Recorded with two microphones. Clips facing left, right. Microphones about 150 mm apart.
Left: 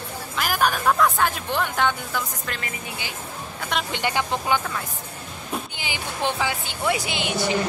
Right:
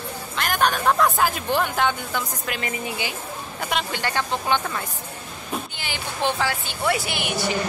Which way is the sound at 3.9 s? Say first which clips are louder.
Left 1 dB; 15° left (ahead or behind).